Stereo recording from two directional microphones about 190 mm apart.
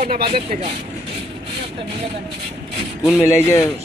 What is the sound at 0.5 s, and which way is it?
Speech, 40° right (ahead or behind).